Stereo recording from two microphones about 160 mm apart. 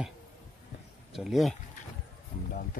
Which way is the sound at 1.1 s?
Centre (ahead or behind).